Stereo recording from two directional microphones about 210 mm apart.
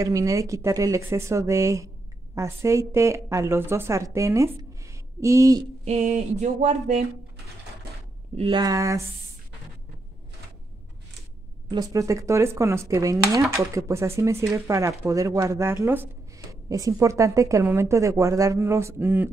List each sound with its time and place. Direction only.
0.0 s speech: 15° right (ahead or behind)
5.9 s a sound: 35° right (ahead or behind)
8.4 s speech: 20° right (ahead or behind)
11.7 s speech: 15° right (ahead or behind)